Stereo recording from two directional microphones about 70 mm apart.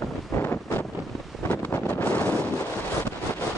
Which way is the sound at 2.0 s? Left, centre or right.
Left.